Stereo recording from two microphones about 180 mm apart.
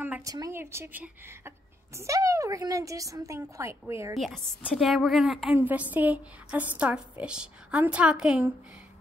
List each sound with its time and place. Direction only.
0.0 s a woman's voice: 15° right (ahead or behind)
4.1 s a woman's voice: centre (ahead or behind)